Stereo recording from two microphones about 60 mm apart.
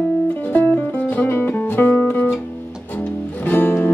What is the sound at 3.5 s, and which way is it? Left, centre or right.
Music, left.